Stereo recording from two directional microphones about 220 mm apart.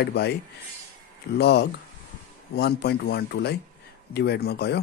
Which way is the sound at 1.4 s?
50° left (ahead or behind).